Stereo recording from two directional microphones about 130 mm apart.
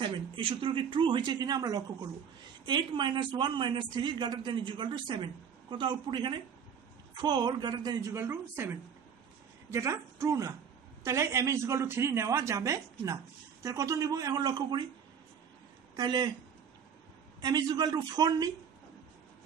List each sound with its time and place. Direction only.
0.0 s speech: 40° right (ahead or behind)
8.1 s speech: 20° right (ahead or behind)
16.0 s speech: 35° right (ahead or behind)
17.4 s speech: 30° right (ahead or behind)